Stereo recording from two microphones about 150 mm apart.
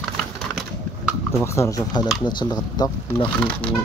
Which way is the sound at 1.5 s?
20° left (ahead or behind).